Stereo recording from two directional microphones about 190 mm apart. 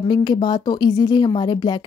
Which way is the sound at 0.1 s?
25° left (ahead or behind).